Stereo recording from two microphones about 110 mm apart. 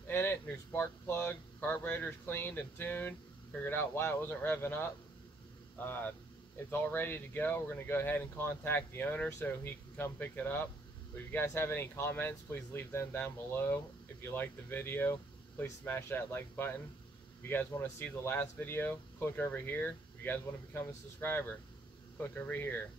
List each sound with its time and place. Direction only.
0.1 s speech: 20° left (ahead or behind)
6.7 s speech: 20° left (ahead or behind)